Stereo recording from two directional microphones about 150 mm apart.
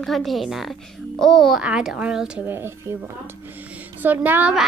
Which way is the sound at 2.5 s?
15° right (ahead or behind).